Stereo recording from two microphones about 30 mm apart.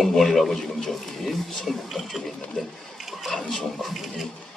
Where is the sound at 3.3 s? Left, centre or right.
Centre.